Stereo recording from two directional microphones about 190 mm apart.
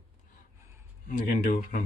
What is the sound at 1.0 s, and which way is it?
Speech, 40° left (ahead or behind).